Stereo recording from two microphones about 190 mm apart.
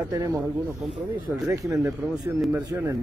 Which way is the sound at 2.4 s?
10° right (ahead or behind).